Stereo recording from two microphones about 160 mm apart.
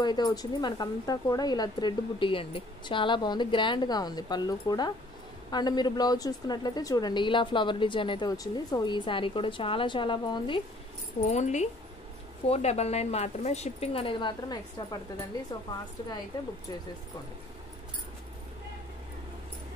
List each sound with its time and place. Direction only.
0.0 s a woman's voice: 25° left (ahead or behind)
11.2 s speech: 45° left (ahead or behind); by 15.0 s 25° left (ahead or behind)